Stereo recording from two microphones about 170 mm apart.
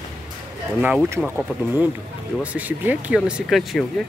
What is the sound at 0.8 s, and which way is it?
Speech, 10° right (ahead or behind).